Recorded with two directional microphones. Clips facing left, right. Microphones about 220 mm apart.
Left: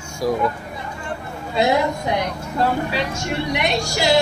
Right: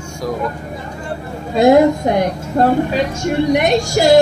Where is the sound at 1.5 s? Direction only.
50° right (ahead or behind).